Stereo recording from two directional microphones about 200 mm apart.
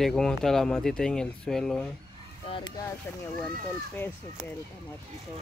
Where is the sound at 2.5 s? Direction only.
25° left (ahead or behind).